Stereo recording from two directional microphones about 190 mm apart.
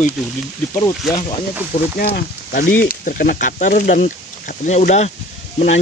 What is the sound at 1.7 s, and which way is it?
Speech, 50° left (ahead or behind).